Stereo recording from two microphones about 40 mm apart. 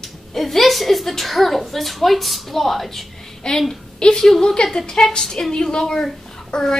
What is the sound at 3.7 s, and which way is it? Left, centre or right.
A woman's voice, centre.